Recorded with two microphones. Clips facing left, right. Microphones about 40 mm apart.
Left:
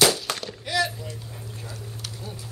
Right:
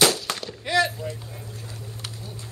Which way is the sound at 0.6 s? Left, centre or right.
Centre.